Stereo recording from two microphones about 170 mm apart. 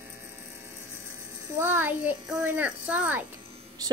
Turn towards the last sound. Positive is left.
turn(degrees=-10)  # may be behind; listen again after turning